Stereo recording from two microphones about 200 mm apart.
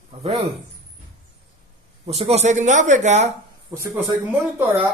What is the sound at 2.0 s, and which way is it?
Speech, 30° right (ahead or behind).